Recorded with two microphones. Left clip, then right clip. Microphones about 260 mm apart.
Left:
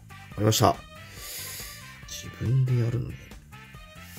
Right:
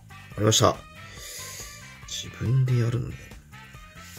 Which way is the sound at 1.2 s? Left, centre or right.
Left.